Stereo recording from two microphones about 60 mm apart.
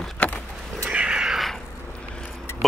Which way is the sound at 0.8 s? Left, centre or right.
Centre.